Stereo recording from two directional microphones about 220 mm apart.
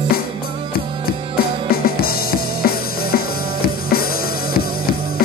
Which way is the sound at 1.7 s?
45° left (ahead or behind).